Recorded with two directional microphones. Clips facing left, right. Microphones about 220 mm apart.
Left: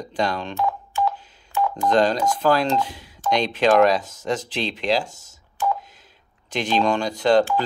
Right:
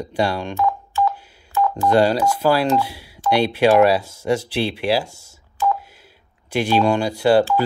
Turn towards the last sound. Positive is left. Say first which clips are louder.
# right 2 dB
turn(degrees=-10)  # may be behind; listen again after turning